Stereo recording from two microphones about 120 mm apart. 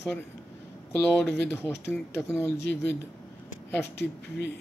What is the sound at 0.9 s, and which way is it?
Speech, 20° left (ahead or behind).